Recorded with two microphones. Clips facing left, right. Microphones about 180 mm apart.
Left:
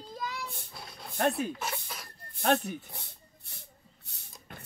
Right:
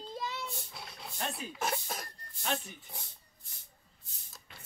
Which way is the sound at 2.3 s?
60° left (ahead or behind).